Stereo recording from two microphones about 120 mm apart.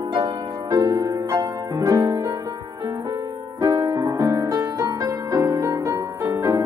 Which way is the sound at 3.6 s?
35° right (ahead or behind).